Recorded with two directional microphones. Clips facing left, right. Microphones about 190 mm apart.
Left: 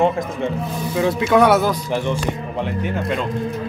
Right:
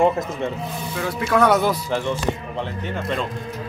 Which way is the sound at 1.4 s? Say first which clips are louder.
Left 1 dB; 5° left (ahead or behind).